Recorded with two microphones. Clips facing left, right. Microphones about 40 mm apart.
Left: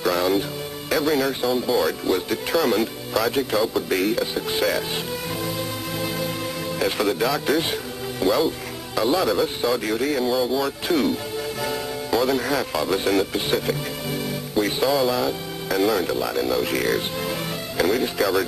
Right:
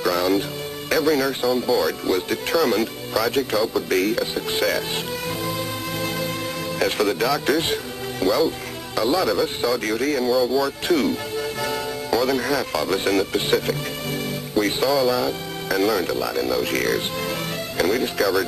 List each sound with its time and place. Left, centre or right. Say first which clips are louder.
0.0 s music: right 1 dB; centre
0.8 s speech: right 1 dB; centre
2.1 s speech: right 1 dB; centre
5.9 s music: even; centre
6.8 s speech: right 1 dB; centre
10.2 s speech: right 2 dB; left
10.6 s speech: right 1 dB; centre
11.3 s music: right 1 dB; centre
12.1 s speech: even; centre
14.6 s speech: right 1 dB; centre